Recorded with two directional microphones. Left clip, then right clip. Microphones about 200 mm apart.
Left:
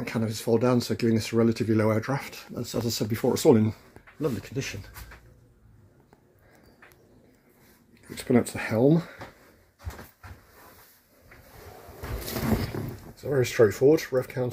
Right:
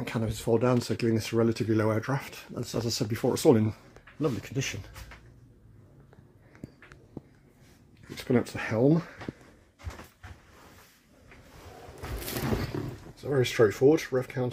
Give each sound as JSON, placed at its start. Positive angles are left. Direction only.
{"t": 0.0, "sound": "speech", "side_deg": -5}
{"t": 4.2, "sound": "speech", "side_deg": -15}
{"t": 8.1, "sound": "speech", "side_deg": 5}
{"t": 12.7, "sound": "a sound", "side_deg": -20}
{"t": 13.1, "sound": "speech", "side_deg": 5}